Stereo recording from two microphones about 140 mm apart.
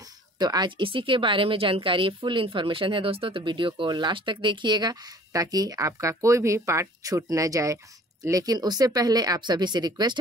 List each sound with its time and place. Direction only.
0.4 s speech: 30° right (ahead or behind)